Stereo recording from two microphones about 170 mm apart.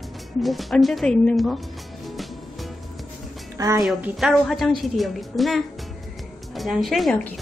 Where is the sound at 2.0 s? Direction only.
Centre (ahead or behind).